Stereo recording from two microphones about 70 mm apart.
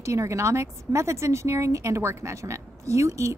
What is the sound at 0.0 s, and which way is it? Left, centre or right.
A woman's voice, right.